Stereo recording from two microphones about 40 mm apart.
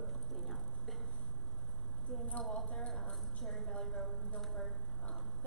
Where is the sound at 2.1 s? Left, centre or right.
Centre.